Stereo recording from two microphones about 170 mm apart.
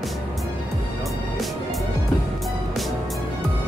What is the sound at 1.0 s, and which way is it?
Music, centre (ahead or behind).